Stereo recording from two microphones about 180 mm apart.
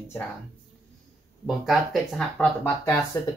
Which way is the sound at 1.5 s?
Centre (ahead or behind).